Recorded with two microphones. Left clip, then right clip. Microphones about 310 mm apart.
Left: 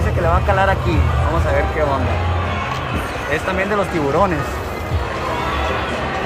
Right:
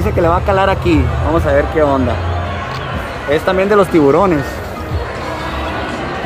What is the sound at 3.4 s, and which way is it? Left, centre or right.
Speech, right.